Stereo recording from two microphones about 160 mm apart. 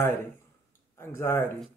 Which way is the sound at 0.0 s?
15° left (ahead or behind).